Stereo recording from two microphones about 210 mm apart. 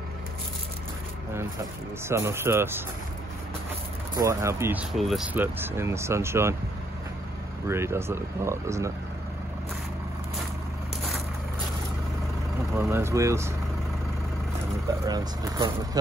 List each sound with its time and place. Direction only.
1.3 s speech: 10° right (ahead or behind)
4.2 s speech: 15° right (ahead or behind)
4.9 s speech: centre (ahead or behind)
7.6 s speech: 10° right (ahead or behind)
12.9 s speech: 15° right (ahead or behind)
15.0 s speech: 15° right (ahead or behind)